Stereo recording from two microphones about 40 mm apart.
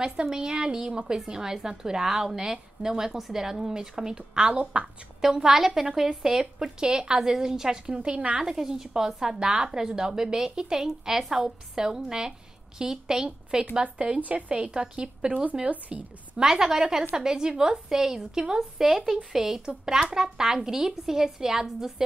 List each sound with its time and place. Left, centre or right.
0.0 s a woman's voice: centre
5.4 s a woman's voice: centre; by 8.4 s right
8.4 s a woman's voice: centre; by 16.0 s right
16.3 s a woman's voice: centre